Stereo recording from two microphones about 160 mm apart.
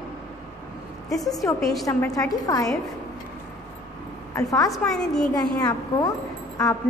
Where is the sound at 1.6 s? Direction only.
Centre (ahead or behind).